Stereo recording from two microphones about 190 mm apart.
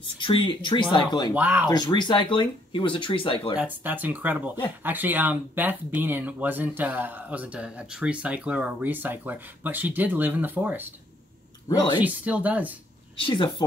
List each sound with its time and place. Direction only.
0.2 s speech: 25° left (ahead or behind)
1.3 s speech: 10° right (ahead or behind)
1.7 s speech: 20° left (ahead or behind)
3.5 s speech: 10° right (ahead or behind)
11.7 s speech: 25° left (ahead or behind)
12.0 s speech: 10° right (ahead or behind)
13.2 s speech: 25° left (ahead or behind)